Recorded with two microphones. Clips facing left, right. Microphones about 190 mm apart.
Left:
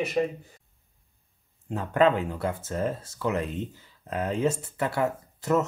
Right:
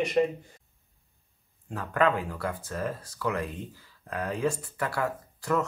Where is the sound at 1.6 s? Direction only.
25° left (ahead or behind).